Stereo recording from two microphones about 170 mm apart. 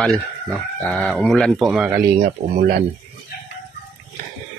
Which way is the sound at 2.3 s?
50° right (ahead or behind).